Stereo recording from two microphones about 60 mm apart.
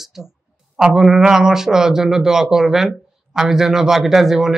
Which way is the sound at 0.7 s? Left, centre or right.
Centre.